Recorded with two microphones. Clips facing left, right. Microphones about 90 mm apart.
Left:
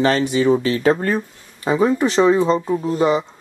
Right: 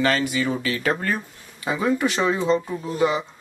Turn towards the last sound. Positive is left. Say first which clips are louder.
# left 5 dB
turn(degrees=30)  # may be behind; listen again after turning